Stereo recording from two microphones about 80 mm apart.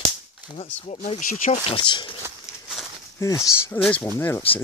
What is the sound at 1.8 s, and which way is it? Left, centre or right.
Speech, left.